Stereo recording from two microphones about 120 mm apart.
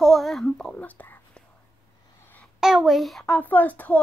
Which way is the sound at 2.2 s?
15° left (ahead or behind).